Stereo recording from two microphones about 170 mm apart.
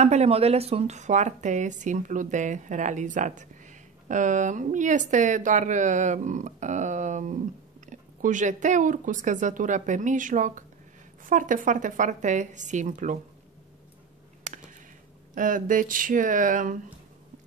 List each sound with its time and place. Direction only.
0.0 s a woman's voice: 40° right (ahead or behind)
15.3 s a woman's voice: 50° right (ahead or behind)